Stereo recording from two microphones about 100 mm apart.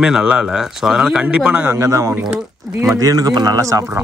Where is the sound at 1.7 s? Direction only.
30° right (ahead or behind).